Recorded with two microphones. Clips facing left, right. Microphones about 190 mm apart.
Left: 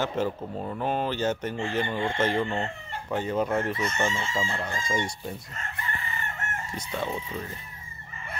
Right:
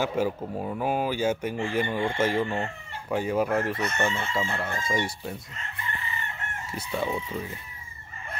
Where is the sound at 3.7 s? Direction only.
60° right (ahead or behind).